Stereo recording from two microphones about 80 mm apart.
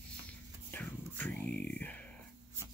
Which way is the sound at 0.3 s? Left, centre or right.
Centre.